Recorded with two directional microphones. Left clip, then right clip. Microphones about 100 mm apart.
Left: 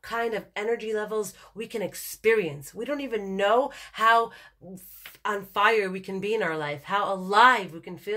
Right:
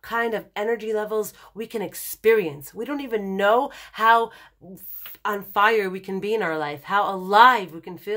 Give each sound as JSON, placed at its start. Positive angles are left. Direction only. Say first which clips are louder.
{"t": 0.0, "sound": "speech", "louder": "right 4 dB", "side_deg": -50}